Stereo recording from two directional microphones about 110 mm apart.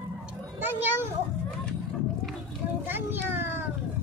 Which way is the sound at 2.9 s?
20° right (ahead or behind).